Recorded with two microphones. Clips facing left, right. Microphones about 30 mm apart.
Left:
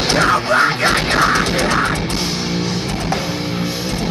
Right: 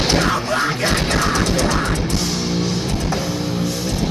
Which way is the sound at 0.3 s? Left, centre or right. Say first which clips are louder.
Left 5 dB; left.